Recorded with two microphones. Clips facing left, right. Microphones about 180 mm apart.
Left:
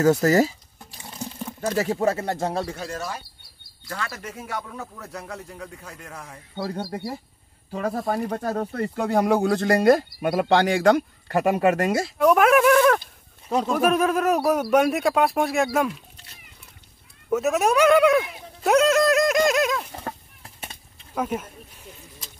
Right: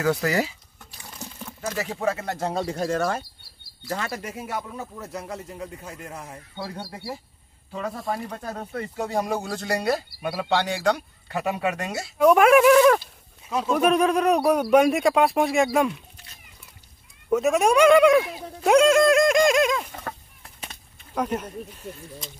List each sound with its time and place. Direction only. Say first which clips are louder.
0.0 s a sound: left 6 dB; 40° left (ahead or behind)
1.6 s speech: left 5 dB; 40° left (ahead or behind)
2.3 s speech: left 1 dB; 10° left (ahead or behind)
2.9 s speech: right 7 dB; 55° right (ahead or behind)
3.8 s speech: right 3 dB; 25° right (ahead or behind)
4.3 s speech: right 1 dB; 5° right (ahead or behind)
6.5 s speech: left 7 dB; 40° left (ahead or behind)
12.2 s speech: right 2 dB; centre (ahead or behind)
17.3 s speech: right 1 dB; centre (ahead or behind)
20.6 s a sound: left 1 dB; 5° left (ahead or behind)